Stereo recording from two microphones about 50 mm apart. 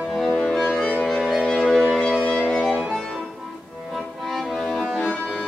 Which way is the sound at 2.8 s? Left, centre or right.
Centre.